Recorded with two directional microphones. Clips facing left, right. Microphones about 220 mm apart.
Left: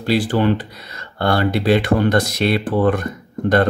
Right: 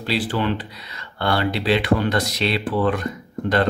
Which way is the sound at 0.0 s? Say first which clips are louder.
Left 6 dB; 45° left (ahead or behind).